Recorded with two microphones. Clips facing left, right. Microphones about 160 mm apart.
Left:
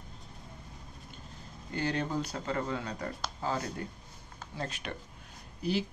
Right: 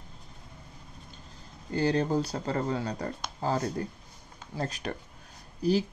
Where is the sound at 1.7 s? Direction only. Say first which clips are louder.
Right 6 dB; 35° right (ahead or behind).